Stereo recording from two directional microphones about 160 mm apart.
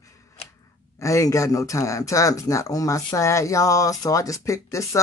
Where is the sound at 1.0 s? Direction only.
20° left (ahead or behind).